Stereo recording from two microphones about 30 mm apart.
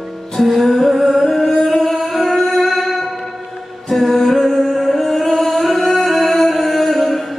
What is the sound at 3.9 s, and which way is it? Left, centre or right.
Music, centre.